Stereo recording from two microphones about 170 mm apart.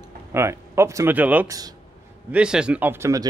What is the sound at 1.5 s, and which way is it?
Speech, 20° right (ahead or behind).